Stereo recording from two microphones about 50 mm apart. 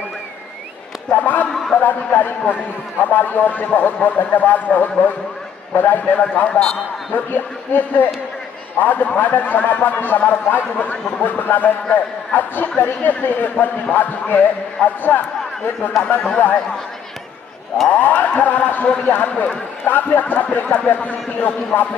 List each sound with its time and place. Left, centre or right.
1.1 s a man's voice: left
16.0 s speech: centre
17.9 s a man's voice: left